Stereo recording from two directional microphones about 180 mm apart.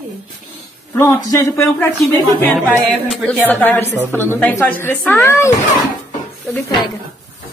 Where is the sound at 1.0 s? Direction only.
15° left (ahead or behind).